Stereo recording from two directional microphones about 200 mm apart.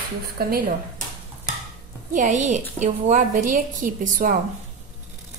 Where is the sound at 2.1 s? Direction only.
35° right (ahead or behind).